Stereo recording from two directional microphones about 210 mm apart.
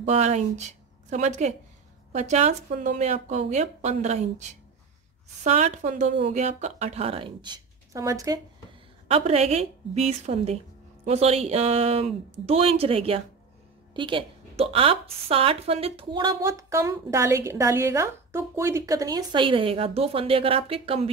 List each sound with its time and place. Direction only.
0.0 s a woman's voice: 30° right (ahead or behind); by 8.4 s 15° right (ahead or behind)
9.0 s a woman's voice: 30° right (ahead or behind)